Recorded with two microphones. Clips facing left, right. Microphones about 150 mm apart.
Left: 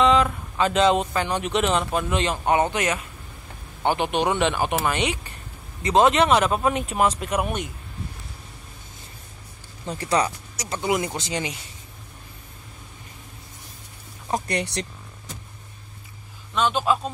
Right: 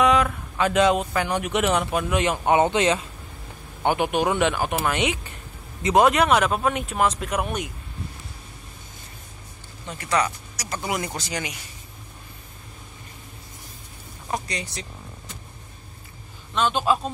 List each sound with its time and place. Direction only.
0.0 s speech: 10° right (ahead or behind)
2.2 s speech: 20° right (ahead or behind)
3.8 s a man's voice: 10° right (ahead or behind)
6.0 s speech: 5° right (ahead or behind)
9.8 s speech: 30° left (ahead or behind)
14.5 s speech: 70° left (ahead or behind)
16.5 s speech: centre (ahead or behind)